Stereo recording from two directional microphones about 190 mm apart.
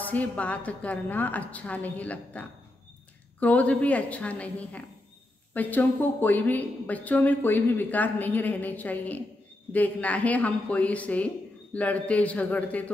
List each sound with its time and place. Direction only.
0.0 s speech: 10° left (ahead or behind)